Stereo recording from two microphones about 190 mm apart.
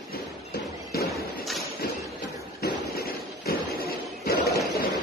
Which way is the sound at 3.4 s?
50° left (ahead or behind).